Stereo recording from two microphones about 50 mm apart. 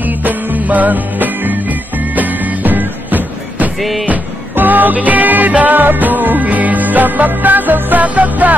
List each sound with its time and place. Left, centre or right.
0.0 s music: right